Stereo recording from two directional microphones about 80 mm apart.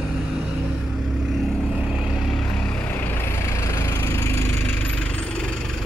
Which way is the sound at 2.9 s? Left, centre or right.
Left.